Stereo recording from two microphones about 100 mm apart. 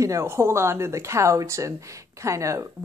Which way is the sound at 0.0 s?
30° right (ahead or behind).